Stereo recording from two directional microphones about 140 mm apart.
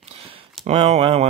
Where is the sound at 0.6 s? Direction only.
50° right (ahead or behind).